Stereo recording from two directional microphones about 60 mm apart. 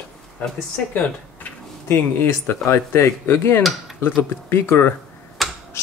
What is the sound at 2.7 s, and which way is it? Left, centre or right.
Speech, left.